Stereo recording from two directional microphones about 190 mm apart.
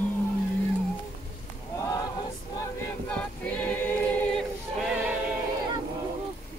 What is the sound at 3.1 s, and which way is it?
Choir, 5° left (ahead or behind).